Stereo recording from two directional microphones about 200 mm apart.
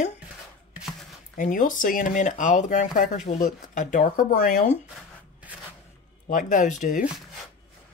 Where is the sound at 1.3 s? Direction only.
40° left (ahead or behind).